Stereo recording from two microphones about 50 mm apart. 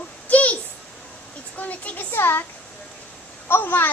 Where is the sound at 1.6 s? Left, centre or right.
Left.